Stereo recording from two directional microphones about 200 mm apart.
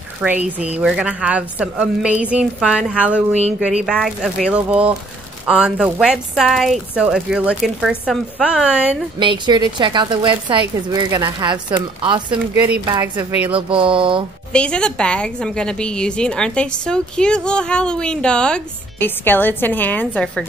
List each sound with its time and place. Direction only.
0.2 s a woman's voice: 5° right (ahead or behind)
9.2 s a woman's voice: 25° right (ahead or behind)
12.3 s a woman's voice: 5° right (ahead or behind)
13.5 s a woman's voice: 25° right (ahead or behind)
14.5 s a woman's voice: 5° left (ahead or behind)